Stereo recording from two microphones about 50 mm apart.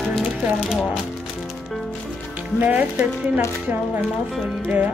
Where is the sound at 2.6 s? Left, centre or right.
Right.